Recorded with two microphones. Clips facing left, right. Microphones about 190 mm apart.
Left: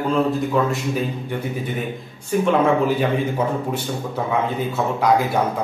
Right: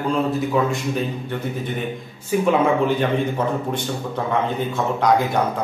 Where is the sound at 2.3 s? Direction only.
5° right (ahead or behind).